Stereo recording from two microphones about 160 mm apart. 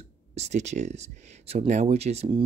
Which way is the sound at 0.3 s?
45° right (ahead or behind).